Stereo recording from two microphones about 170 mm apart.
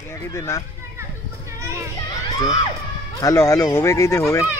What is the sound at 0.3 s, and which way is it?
Speech, 20° left (ahead or behind).